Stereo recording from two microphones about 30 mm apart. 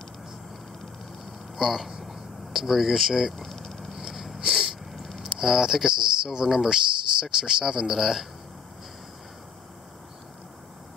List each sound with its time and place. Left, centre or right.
1.6 s speech: centre
3.3 s vehicle: centre
4.1 s a sound: centre
5.3 s speech: centre